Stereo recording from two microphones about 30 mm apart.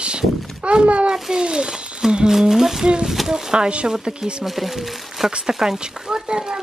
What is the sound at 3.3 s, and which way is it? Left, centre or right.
Speech, right.